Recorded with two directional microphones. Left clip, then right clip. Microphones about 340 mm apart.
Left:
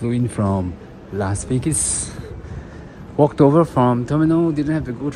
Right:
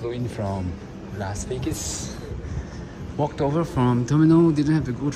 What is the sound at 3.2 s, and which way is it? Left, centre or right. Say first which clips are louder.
Speech: left 10 dB; left.